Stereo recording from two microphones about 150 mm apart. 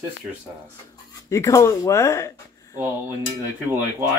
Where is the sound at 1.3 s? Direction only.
20° left (ahead or behind).